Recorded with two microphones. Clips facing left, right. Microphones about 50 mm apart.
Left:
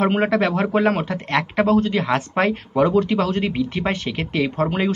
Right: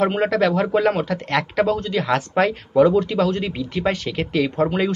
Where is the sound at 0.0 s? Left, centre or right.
Left.